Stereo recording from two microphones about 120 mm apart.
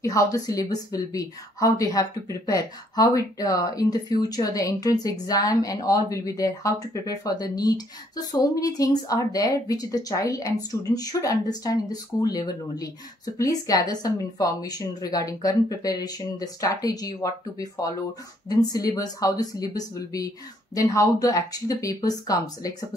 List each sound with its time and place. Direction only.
0.0 s a woman's voice: 30° left (ahead or behind)